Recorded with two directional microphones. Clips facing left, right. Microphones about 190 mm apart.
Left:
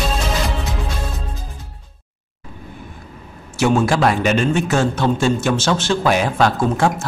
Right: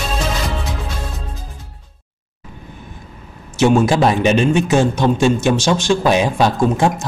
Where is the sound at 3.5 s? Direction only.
20° right (ahead or behind).